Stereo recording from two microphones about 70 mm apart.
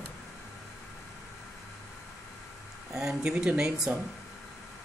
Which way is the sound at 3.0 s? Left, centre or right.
Centre.